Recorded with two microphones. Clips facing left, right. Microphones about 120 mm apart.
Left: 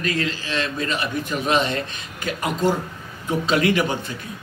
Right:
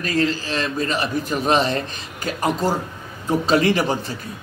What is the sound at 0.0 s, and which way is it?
A man's voice, 35° right (ahead or behind).